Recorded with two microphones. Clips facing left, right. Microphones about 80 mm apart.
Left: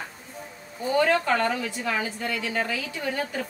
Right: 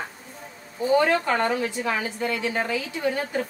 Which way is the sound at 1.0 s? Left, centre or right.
Right.